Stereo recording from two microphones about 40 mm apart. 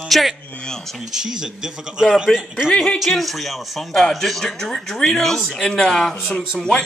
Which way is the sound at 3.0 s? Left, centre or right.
Centre.